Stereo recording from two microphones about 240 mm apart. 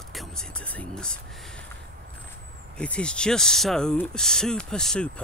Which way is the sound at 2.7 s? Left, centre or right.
Centre.